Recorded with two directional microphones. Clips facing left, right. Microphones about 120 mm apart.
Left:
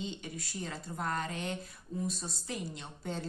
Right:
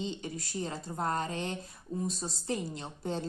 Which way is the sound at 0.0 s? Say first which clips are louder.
Right 4 dB; 25° right (ahead or behind).